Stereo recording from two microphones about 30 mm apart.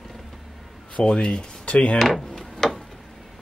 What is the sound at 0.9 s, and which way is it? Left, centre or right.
Speech, left.